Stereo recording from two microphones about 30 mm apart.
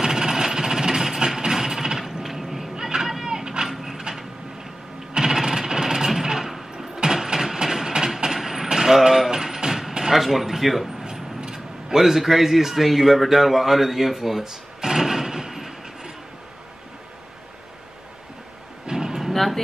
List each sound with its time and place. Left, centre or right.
0.0 s a sound: right
2.7 s vehicle: centre
3.3 s vehicle: right
3.6 s clip-clop: centre
5.1 s jackhammer: centre
7.5 s train: centre
8.6 s vehicle: centre
9.3 s music: centre
10.1 s speech: centre
11.1 s speech: right
18.9 s guitar: centre
19.3 s vehicle: centre